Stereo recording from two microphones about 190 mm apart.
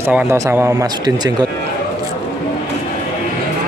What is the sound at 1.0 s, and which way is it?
Speech, 20° right (ahead or behind).